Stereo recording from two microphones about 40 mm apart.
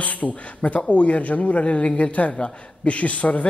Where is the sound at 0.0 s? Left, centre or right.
Left.